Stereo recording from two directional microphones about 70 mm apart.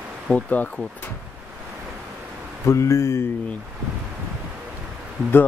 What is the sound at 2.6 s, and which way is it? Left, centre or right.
Speech, left.